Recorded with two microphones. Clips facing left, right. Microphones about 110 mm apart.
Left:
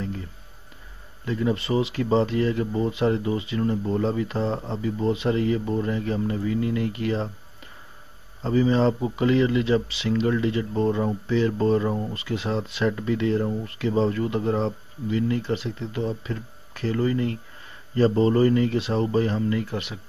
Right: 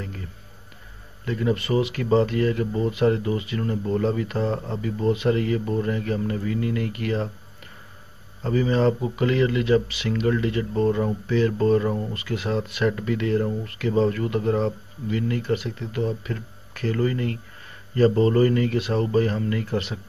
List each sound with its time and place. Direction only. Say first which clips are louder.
1.2 s speech: even; 20° left (ahead or behind)
19.7 s speech: right 4 dB; 10° left (ahead or behind)